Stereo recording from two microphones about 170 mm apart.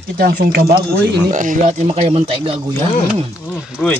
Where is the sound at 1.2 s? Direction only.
50° right (ahead or behind).